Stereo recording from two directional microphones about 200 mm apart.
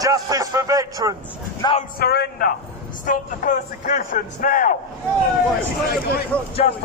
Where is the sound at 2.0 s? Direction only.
50° left (ahead or behind).